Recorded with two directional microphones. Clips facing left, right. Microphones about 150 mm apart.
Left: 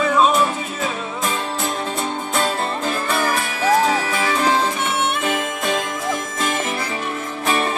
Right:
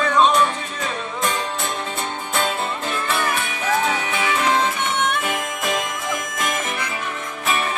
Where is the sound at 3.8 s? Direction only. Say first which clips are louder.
Left 3 dB; 35° left (ahead or behind).